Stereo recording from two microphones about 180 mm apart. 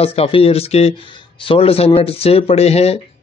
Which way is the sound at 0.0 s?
30° left (ahead or behind).